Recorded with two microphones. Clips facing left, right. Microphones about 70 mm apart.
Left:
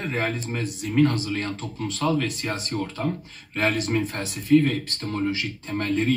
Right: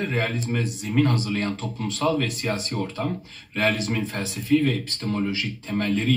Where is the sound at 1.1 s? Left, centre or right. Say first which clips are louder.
Right 2 dB; right.